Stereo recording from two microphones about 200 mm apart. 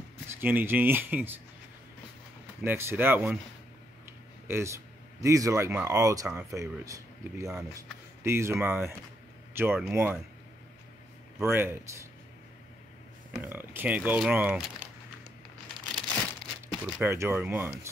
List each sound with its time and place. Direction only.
0.4 s speech: 10° right (ahead or behind)
2.6 s speech: 10° right (ahead or behind)
4.5 s speech: 15° right (ahead or behind)
11.3 s speech: 10° right (ahead or behind)
13.4 s speech: 10° right (ahead or behind)
16.6 s speech: 15° right (ahead or behind)